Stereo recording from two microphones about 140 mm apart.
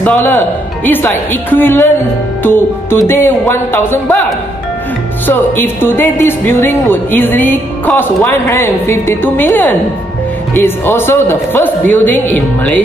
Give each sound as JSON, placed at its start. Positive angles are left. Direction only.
{"t": 0.0, "sound": "speech", "side_deg": 15}
{"t": 2.4, "sound": "music", "side_deg": 15}
{"t": 3.1, "sound": "speech", "side_deg": 15}
{"t": 5.2, "sound": "speech", "side_deg": 15}